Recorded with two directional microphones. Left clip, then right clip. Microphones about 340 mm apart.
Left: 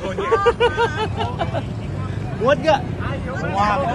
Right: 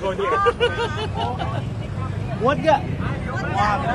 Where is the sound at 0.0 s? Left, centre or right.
Centre.